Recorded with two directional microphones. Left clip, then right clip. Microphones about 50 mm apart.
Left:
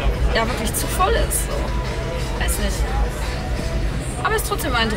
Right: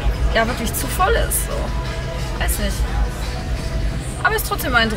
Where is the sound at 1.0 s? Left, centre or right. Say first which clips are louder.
Right 2 dB; centre.